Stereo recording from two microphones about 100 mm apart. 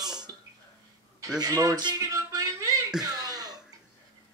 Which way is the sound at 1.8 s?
40° right (ahead or behind).